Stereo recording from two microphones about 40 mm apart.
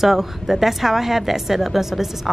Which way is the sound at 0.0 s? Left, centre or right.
Centre.